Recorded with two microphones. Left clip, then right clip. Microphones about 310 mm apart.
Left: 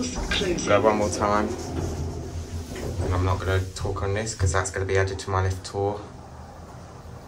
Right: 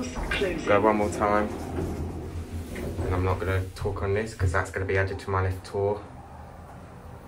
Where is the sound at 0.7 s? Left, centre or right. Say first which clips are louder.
Left 1 dB; centre.